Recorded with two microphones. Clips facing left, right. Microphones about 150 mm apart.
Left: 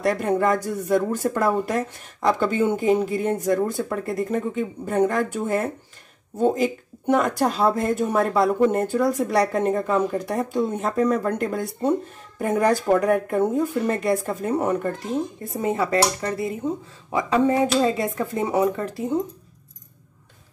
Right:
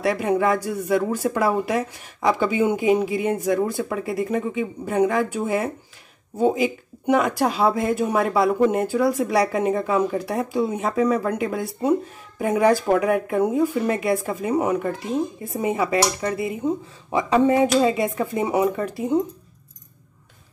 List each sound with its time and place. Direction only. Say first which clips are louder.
0.0 s speech: even; 5° right (ahead or behind)